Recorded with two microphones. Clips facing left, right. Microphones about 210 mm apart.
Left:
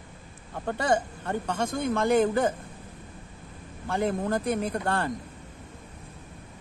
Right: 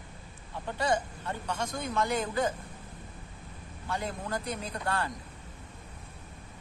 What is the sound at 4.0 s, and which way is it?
Speech, 55° left (ahead or behind).